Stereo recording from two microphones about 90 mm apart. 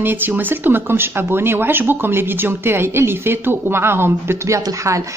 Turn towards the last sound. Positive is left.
turn(degrees=-35)  # may be behind; listen again after turning